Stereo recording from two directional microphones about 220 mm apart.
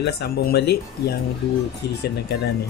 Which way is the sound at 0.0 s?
50° left (ahead or behind).